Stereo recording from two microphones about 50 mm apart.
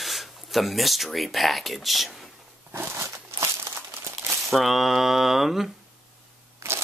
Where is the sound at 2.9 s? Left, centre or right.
Right.